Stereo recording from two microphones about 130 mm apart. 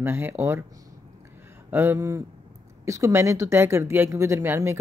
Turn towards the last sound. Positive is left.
turn(degrees=-20)  # may be behind; listen again after turning